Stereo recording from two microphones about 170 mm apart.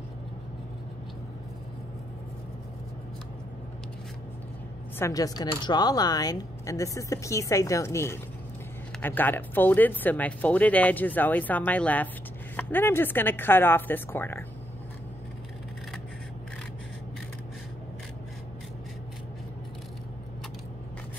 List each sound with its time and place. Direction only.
4.9 s speech: 20° left (ahead or behind)